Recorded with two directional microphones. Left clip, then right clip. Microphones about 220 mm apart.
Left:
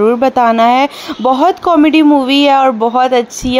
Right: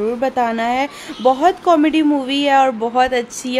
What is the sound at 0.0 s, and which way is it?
Speech, 20° left (ahead or behind).